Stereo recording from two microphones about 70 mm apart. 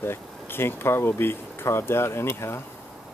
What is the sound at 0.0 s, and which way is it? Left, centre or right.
Speech, left.